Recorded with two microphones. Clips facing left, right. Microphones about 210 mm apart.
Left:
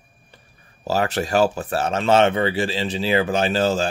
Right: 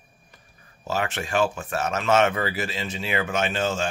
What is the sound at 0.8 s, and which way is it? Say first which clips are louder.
Speech: left 6 dB; 35° left (ahead or behind).